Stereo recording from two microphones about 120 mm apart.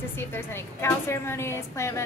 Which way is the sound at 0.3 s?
20° left (ahead or behind).